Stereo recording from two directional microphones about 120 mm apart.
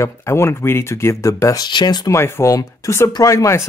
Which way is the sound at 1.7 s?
35° left (ahead or behind).